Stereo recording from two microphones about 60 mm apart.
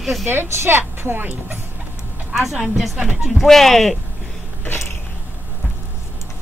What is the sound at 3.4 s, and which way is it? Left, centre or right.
Speech, centre.